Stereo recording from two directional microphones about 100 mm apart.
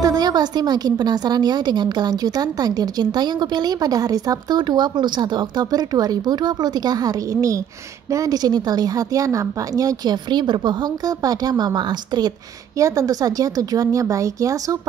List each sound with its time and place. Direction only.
0.0 s a woman's voice: 40° right (ahead or behind)
12.7 s a woman's voice: 35° right (ahead or behind)